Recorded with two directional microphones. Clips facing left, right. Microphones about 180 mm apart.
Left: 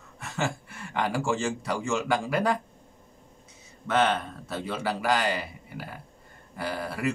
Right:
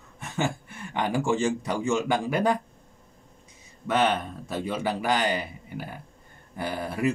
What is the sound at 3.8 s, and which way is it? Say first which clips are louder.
Speech: right 1 dB; 15° right (ahead or behind).